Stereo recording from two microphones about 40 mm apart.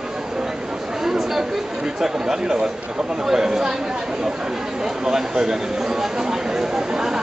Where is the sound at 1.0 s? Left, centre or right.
Centre.